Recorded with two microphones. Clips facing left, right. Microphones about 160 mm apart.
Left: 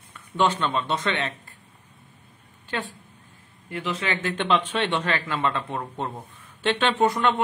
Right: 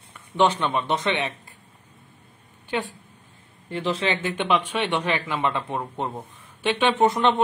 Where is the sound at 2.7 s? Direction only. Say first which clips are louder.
Right 3 dB; 15° right (ahead or behind).